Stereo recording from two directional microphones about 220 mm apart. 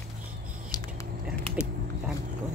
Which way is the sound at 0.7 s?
15° left (ahead or behind).